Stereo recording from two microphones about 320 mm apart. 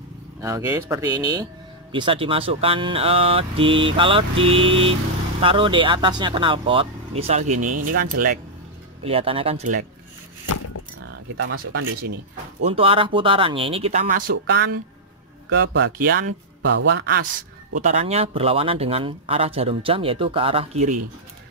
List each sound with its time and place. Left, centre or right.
0.4 s speech: centre
11.4 s speech: right
12.6 s speech: centre